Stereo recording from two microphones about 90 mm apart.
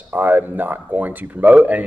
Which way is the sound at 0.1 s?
20° right (ahead or behind).